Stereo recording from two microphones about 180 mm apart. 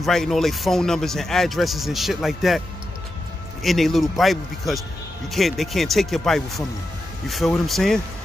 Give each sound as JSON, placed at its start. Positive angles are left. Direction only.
{"t": 0.0, "sound": "speech", "side_deg": 0}
{"t": 3.6, "sound": "speech", "side_deg": 0}